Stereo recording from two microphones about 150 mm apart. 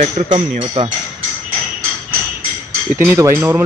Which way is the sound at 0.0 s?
45° right (ahead or behind).